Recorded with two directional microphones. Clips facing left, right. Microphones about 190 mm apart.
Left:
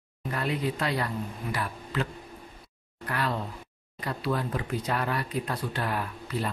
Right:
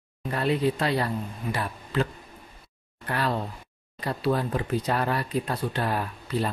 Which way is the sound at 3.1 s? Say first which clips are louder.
Right 3 dB; 35° right (ahead or behind).